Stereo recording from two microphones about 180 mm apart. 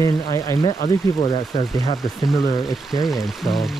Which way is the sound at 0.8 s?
30° left (ahead or behind).